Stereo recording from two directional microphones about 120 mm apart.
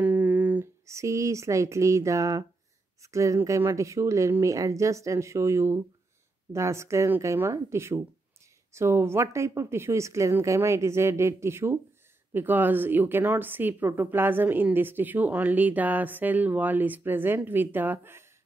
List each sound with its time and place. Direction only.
0.0 s speech: 10° right (ahead or behind)